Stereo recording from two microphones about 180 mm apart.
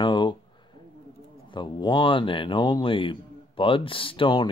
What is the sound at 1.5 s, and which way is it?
Speech, 25° left (ahead or behind).